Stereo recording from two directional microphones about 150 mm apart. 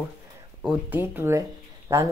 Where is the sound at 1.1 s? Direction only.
15° right (ahead or behind).